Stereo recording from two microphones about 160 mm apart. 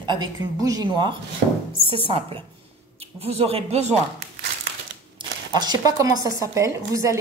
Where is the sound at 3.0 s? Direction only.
40° right (ahead or behind).